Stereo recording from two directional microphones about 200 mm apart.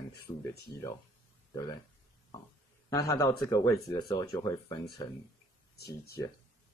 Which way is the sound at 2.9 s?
15° left (ahead or behind).